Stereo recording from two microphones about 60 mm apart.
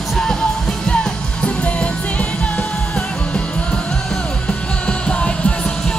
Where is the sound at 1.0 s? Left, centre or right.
Centre.